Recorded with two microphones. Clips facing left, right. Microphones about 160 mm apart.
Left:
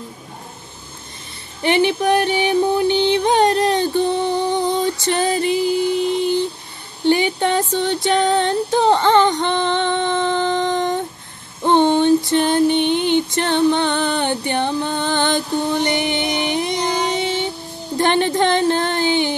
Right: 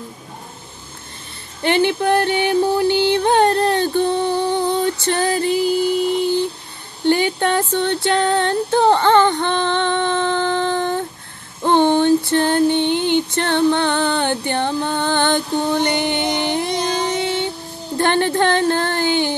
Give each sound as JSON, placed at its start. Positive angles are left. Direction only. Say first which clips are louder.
{"t": 1.6, "sound": "music", "louder": "even", "side_deg": 15}
{"t": 7.1, "sound": "female singing", "louder": "even", "side_deg": 15}
{"t": 11.6, "sound": "a sound", "louder": "even", "side_deg": 15}
{"t": 12.3, "sound": "female singing", "louder": "even", "side_deg": 15}
{"t": 16.2, "sound": "music", "louder": "right 1 dB", "side_deg": -20}
{"t": 16.5, "sound": "music", "louder": "even", "side_deg": 15}
{"t": 17.9, "sound": "a sound", "louder": "even", "side_deg": 20}